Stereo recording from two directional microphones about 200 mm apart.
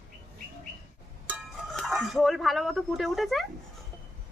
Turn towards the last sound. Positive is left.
turn(degrees=0)  # may be behind; listen again after turning